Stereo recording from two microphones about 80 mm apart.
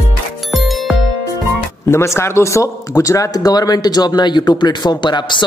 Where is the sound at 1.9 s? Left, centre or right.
Left.